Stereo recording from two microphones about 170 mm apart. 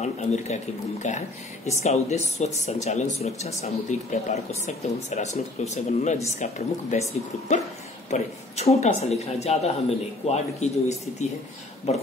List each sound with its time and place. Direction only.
0.0 s speech: 40° left (ahead or behind)